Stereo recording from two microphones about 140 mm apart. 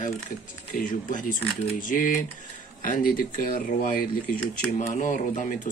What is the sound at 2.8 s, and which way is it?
Speech, 80° left.